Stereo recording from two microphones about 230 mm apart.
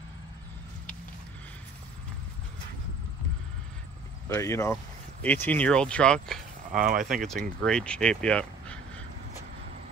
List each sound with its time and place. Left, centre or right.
4.3 s speech: centre
6.7 s speech: right
7.1 s speech: centre